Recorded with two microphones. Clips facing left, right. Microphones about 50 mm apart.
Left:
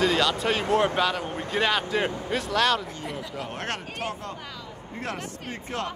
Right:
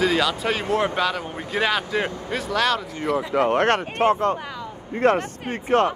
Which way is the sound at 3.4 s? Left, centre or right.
Right.